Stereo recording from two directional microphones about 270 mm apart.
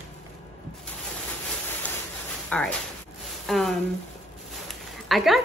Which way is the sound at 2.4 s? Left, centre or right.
Centre.